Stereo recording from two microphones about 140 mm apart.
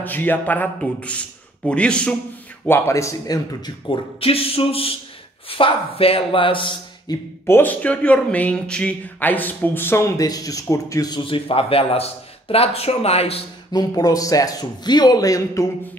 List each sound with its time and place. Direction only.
0.0 s a man's voice: 15° left (ahead or behind)
2.6 s a man's voice: 20° left (ahead or behind)
4.2 s speech: 45° left (ahead or behind)
7.4 s a man's voice: 15° left (ahead or behind); by 13.4 s 45° left (ahead or behind)
13.7 s a man's voice: 25° left (ahead or behind)